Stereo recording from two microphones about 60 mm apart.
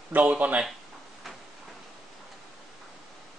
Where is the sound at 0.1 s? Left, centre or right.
Right.